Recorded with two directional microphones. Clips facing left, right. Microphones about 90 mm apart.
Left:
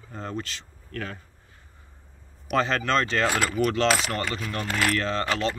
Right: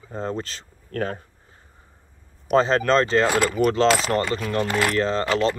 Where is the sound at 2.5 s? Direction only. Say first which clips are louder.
Right 6 dB; 30° right (ahead or behind).